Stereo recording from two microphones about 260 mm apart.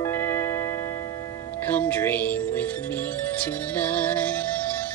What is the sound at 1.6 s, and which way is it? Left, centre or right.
Speech, centre.